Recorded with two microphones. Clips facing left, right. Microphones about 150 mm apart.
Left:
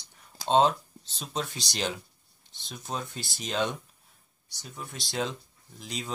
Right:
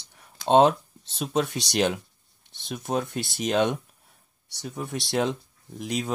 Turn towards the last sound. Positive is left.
turn(degrees=-65)  # may be behind; listen again after turning